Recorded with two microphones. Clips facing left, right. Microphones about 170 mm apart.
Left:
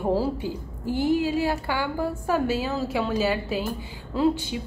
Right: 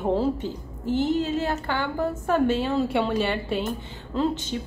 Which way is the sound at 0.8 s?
20° right (ahead or behind).